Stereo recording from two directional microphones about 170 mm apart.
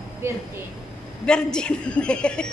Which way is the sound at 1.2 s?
5° left (ahead or behind).